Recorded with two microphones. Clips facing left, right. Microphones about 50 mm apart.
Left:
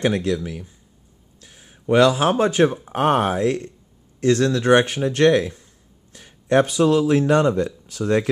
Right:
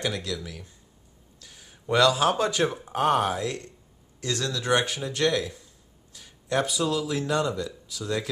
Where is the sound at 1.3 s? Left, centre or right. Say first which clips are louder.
Left 2 dB; left.